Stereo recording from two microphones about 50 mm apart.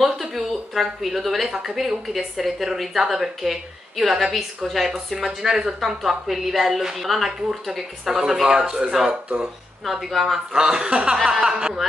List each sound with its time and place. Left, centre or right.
0.0 s speech: centre
1.5 s a woman's voice: centre
5.2 s a woman's voice: centre
10.5 s speech: centre